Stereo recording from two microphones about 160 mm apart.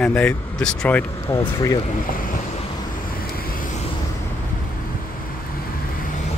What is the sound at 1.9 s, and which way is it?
Speech, 60° left (ahead or behind).